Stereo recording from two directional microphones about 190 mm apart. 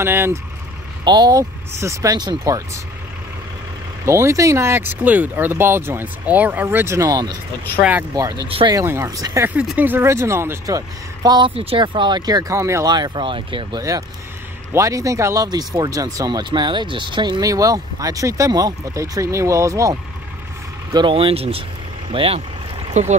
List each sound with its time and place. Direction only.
0.0 s speech: 10° right (ahead or behind)
1.0 s speech: 20° right (ahead or behind)
4.0 s speech: 15° right (ahead or behind)
8.5 s speech: 30° right (ahead or behind)
8.7 s speech: 15° right (ahead or behind)
11.2 s speech: 25° right (ahead or behind)